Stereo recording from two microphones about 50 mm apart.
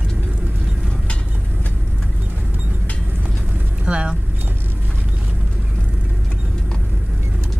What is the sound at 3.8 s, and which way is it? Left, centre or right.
Vehicle, right.